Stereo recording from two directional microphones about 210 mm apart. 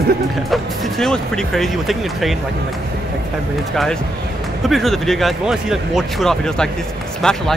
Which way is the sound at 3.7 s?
Centre (ahead or behind).